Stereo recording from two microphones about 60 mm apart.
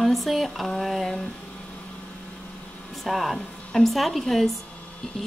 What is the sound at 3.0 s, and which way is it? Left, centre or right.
Speech, centre.